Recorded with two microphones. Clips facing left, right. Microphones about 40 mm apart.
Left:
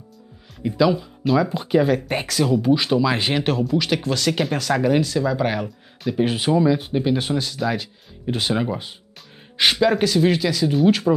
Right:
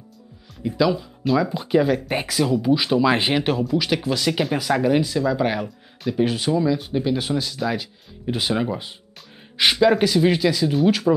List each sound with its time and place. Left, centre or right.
0.7 s speech: centre
3.0 s speech: centre
3.3 s speech: centre
4.6 s speech: centre
5.2 s speech: centre
6.2 s speech: centre